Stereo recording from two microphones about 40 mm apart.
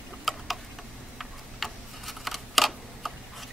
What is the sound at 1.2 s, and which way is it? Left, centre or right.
Camera, centre.